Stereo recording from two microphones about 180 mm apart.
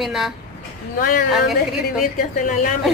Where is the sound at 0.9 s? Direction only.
50° left (ahead or behind).